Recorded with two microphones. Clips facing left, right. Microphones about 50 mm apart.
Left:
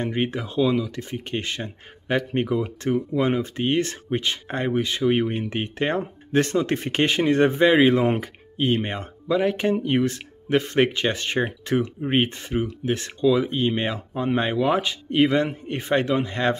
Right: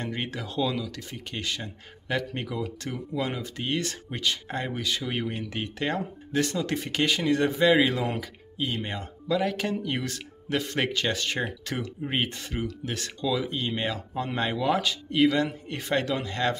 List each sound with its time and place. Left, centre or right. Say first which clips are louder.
0.0 s speech: left 7 dB; left